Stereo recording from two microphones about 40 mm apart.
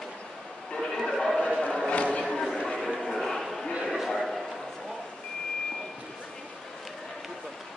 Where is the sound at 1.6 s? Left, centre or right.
Left.